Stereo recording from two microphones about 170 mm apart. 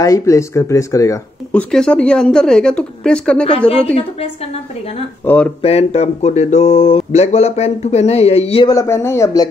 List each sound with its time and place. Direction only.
0.0 s speech: 20° left (ahead or behind)
1.5 s speech: 5° left (ahead or behind)
5.2 s speech: 10° left (ahead or behind)
5.6 s speech: 35° left (ahead or behind)
8.6 s speech: 20° left (ahead or behind)